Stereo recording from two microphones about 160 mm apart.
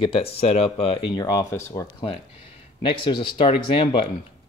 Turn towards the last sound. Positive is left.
turn(degrees=35)  # may be behind; listen again after turning